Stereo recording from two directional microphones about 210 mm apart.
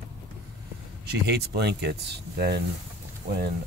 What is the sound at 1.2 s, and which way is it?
Speech, 50° right (ahead or behind).